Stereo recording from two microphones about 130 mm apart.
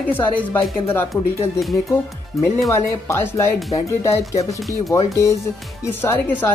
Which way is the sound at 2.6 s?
20° left (ahead or behind).